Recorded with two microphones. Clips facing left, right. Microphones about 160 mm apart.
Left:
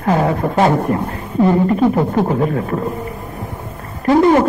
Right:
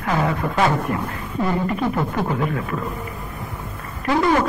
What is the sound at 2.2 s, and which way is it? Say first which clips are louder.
Speech: left 7 dB; 35° left (ahead or behind).